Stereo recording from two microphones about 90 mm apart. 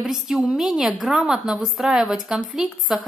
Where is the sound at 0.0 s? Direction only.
5° right (ahead or behind).